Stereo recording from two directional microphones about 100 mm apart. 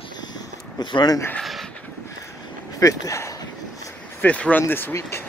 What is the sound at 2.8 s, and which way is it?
Speech, 35° left (ahead or behind).